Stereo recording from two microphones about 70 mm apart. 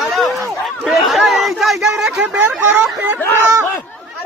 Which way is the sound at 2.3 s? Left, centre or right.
Right.